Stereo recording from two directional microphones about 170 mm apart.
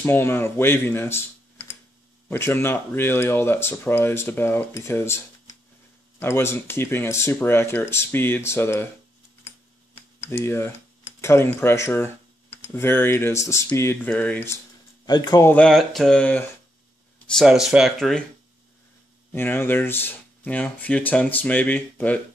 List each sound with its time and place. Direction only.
0.0 s speech: 15° left (ahead or behind)
2.2 s speech: 15° left (ahead or behind)
10.2 s speech: 15° left (ahead or behind)
15.0 s speech: 25° left (ahead or behind)
15.4 s speech: 5° left (ahead or behind)
19.3 s speech: 15° left (ahead or behind)